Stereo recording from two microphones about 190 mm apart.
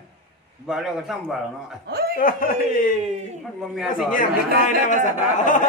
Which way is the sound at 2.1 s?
45° left (ahead or behind).